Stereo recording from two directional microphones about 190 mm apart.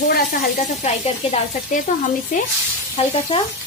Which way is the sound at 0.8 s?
35° left (ahead or behind).